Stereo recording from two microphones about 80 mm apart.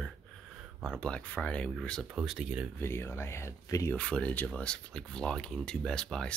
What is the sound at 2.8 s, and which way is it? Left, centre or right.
Speech, left.